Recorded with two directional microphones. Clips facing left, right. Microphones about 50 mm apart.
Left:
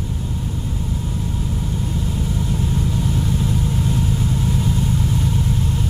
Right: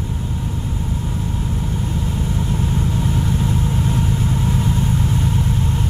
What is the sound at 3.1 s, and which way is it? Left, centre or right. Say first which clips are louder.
Vehicle: right 1 dB; right.